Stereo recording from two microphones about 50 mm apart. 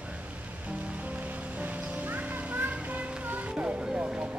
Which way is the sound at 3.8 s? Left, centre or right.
Centre.